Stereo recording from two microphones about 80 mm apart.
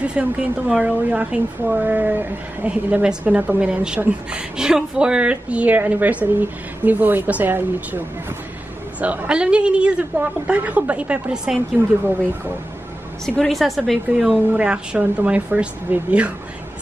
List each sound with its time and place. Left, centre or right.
0.0 s a woman's voice: centre
9.0 s a woman's voice: centre
13.2 s a woman's voice: centre
14.5 s a woman's voice: centre